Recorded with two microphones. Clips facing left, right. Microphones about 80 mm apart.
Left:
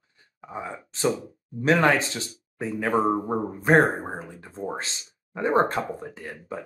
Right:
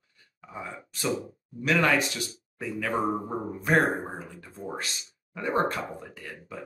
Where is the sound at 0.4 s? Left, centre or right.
Left.